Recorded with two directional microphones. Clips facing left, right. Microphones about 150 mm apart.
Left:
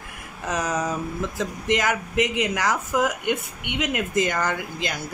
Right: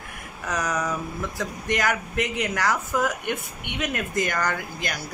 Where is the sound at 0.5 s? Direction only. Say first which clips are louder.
Left 1 dB; 25° left (ahead or behind).